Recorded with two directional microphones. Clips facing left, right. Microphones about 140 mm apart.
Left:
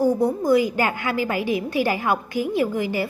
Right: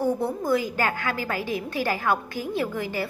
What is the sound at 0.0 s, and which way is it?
A woman's voice, 15° left (ahead or behind).